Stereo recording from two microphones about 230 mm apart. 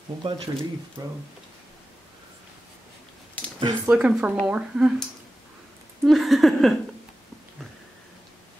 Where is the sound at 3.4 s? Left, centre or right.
Centre.